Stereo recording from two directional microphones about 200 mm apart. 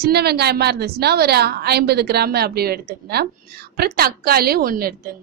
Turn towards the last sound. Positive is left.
turn(degrees=-45)  # may be behind; listen again after turning